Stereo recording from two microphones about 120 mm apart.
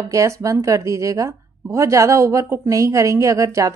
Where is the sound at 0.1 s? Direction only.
25° right (ahead or behind).